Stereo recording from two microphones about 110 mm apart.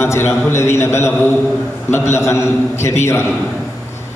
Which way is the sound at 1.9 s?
25° left (ahead or behind).